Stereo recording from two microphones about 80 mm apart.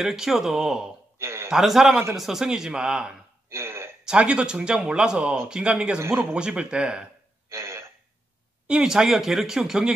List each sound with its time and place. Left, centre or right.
0.0 s speech: centre
1.1 s a sound: right
1.5 s speech: centre
3.4 s a sound: right
4.0 s speech: centre
7.4 s throat clearing: right
8.6 s speech: centre